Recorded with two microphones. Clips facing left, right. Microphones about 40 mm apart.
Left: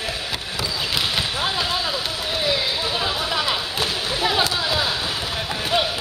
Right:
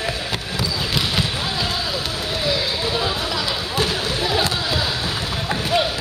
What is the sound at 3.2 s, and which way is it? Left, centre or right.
Basketball bounce, left.